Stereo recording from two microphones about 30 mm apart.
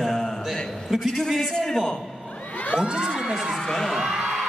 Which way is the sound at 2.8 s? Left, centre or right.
Centre.